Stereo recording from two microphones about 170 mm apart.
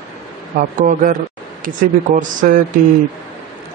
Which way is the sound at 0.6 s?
50° right (ahead or behind).